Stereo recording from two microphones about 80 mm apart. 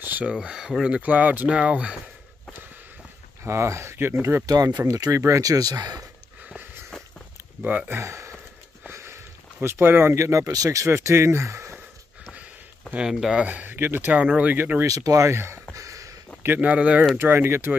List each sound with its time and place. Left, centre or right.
0.0 s a sound: right
0.3 s speech: centre
3.4 s speech: right
4.5 s speech: right
7.6 s speech: centre
8.0 s a sound: right
8.8 s speech: right
12.9 s speech: centre
13.5 s speech: right
14.8 s speech: right
15.7 s a sound: right
16.4 s speech: centre
17.2 s speech: right